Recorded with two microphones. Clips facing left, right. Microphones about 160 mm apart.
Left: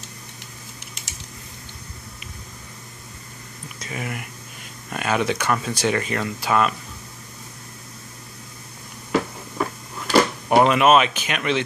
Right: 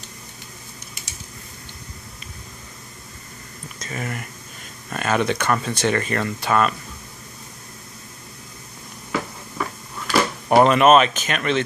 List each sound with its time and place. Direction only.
3.8 s speech: 10° left (ahead or behind)
9.1 s cupboard open or close: 35° left (ahead or behind)
10.5 s speech: 5° left (ahead or behind)